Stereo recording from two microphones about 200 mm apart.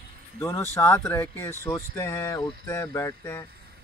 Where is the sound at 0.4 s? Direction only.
15° left (ahead or behind).